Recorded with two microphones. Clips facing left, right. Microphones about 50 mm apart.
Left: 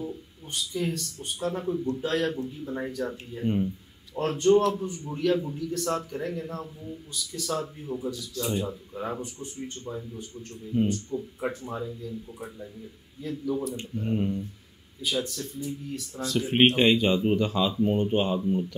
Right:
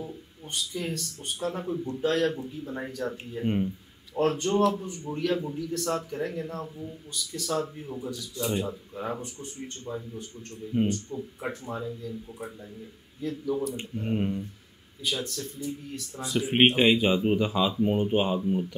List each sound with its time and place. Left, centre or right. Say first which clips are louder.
0.0 s a man's voice: left 3 dB; centre
3.4 s speech: left 1 dB; right
4.1 s a man's voice: left 4 dB; centre
10.7 s speech: left 1 dB; centre
11.1 s a man's voice: left 3 dB; centre
13.7 s speech: left 1 dB; centre
15.0 s a man's voice: left 2 dB; centre
16.2 s speech: even; centre